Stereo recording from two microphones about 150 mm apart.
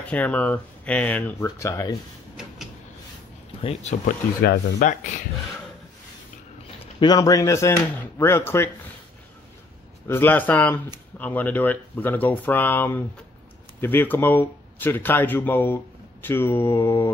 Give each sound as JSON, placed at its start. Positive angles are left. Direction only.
{"t": 0.0, "sound": "speech", "side_deg": 10}
{"t": 3.6, "sound": "speech", "side_deg": 45}
{"t": 4.4, "sound": "speech", "side_deg": 80}
{"t": 4.8, "sound": "speech", "side_deg": 55}
{"t": 7.0, "sound": "speech", "side_deg": 25}
{"t": 10.0, "sound": "speech", "side_deg": 15}